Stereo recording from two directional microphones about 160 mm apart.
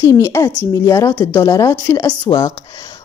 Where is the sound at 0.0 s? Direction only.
20° left (ahead or behind).